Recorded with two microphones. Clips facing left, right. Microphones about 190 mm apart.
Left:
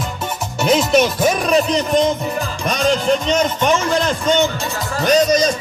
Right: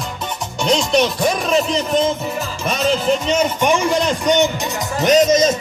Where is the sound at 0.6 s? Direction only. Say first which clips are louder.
Left 2 dB; 5° left (ahead or behind).